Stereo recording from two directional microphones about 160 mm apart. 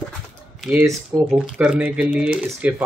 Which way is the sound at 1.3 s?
5° right (ahead or behind).